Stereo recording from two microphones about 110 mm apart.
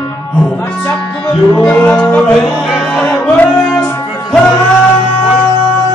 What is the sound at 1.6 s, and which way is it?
Music, 15° left (ahead or behind).